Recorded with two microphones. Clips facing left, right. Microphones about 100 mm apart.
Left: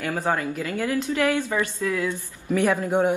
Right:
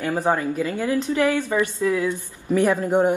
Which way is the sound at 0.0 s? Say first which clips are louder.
Right 3 dB; 15° right (ahead or behind).